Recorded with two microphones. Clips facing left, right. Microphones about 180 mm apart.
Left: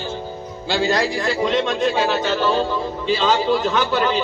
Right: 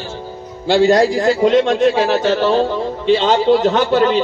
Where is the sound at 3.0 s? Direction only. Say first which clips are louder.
Right 6 dB; 65° right (ahead or behind).